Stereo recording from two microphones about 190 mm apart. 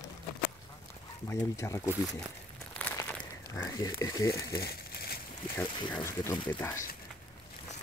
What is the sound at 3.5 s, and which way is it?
Speech, 15° left (ahead or behind).